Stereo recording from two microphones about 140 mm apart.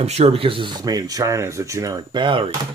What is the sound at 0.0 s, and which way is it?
Speech, 45° right (ahead or behind).